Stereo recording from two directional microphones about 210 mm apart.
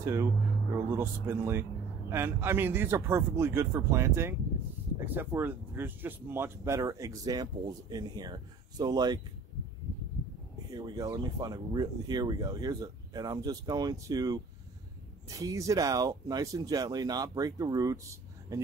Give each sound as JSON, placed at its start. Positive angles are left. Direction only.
{"t": 0.0, "sound": "speech", "side_deg": -10}
{"t": 10.7, "sound": "speech", "side_deg": -20}